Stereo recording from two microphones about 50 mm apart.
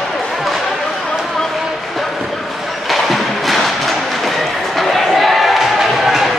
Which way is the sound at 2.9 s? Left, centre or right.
Centre.